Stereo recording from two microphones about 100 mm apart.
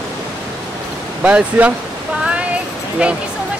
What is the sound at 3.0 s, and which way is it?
Speech, 10° right (ahead or behind).